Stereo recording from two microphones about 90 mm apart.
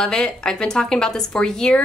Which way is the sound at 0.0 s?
5° left (ahead or behind).